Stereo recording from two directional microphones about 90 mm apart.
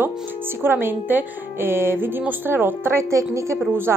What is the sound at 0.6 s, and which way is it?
A woman's voice, 25° right (ahead or behind).